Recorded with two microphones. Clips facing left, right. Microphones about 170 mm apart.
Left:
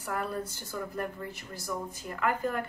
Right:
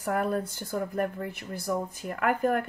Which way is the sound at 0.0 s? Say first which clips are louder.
Right 6 dB; 55° right (ahead or behind).